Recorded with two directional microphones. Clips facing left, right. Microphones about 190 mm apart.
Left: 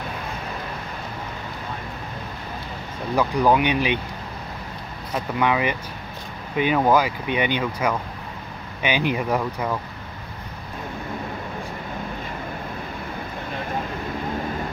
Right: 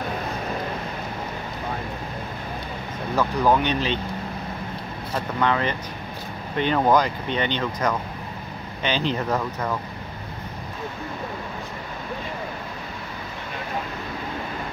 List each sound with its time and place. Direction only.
3.2 s speech: 15° left (ahead or behind)
5.1 s speech: 10° left (ahead or behind)